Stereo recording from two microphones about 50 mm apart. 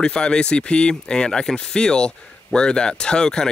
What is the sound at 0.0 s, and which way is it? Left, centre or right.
Speech, centre.